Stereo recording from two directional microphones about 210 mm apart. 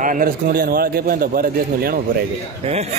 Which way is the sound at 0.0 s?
40° right (ahead or behind).